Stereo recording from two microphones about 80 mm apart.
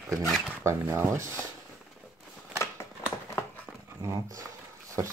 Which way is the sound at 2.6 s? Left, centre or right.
Left.